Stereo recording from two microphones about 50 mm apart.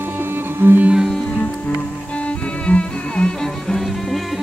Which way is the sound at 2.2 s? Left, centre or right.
Left.